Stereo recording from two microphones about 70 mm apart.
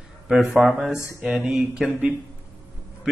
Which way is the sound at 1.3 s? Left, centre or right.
Centre.